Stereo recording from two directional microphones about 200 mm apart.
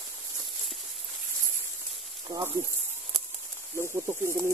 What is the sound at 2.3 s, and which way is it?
Speech, 20° right (ahead or behind).